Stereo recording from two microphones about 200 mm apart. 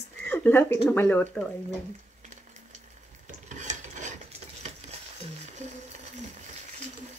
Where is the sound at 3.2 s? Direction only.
35° right (ahead or behind).